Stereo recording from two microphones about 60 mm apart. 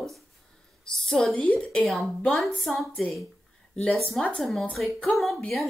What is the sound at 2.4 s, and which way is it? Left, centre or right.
Speech, centre.